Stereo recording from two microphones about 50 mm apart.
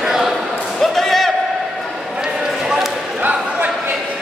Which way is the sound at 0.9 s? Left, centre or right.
Centre.